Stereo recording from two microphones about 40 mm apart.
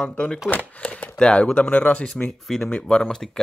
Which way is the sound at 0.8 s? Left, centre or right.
Left.